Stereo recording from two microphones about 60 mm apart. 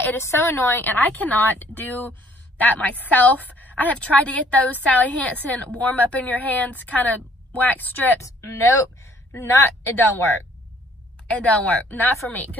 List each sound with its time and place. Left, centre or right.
0.2 s a woman's voice: left
0.7 s a woman's voice: left
8.2 s a woman's voice: left
11.2 s a woman's voice: left